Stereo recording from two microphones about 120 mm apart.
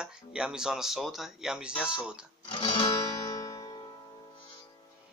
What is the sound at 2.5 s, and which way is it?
Music, 45° left (ahead or behind).